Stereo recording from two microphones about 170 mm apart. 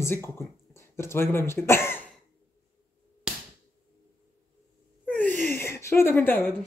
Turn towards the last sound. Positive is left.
turn(degrees=10)  # may be behind; listen again after turning